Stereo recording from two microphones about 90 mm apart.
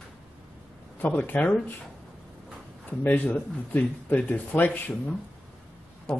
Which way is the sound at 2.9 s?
20° left (ahead or behind).